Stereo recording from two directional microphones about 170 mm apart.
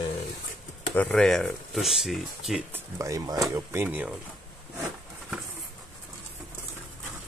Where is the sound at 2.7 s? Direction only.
20° right (ahead or behind).